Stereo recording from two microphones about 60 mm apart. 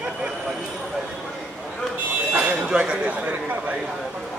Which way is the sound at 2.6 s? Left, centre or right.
Centre.